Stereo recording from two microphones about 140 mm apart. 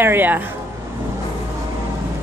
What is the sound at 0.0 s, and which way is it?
Speech, 15° right (ahead or behind).